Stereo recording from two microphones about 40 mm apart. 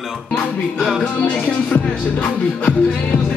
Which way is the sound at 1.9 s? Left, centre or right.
Left.